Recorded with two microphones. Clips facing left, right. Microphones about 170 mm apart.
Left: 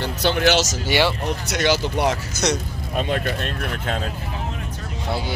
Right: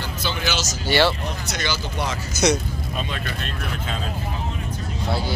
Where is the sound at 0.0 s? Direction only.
65° left (ahead or behind).